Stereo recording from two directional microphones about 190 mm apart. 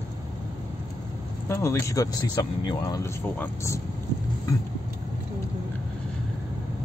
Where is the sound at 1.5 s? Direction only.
15° left (ahead or behind).